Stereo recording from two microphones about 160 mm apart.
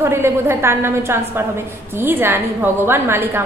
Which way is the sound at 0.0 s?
15° right (ahead or behind).